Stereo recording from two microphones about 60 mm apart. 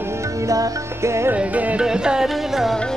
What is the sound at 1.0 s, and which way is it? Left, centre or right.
Music, right.